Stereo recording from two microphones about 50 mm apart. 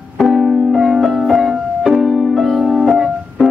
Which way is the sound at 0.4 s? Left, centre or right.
Centre.